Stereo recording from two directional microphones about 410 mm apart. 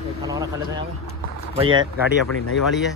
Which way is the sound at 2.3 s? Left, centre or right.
Left.